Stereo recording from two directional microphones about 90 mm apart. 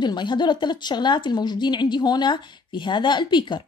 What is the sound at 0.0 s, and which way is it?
A woman's voice, 55° left (ahead or behind).